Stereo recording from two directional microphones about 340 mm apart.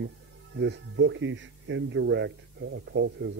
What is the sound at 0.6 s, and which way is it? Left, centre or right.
Speech, right.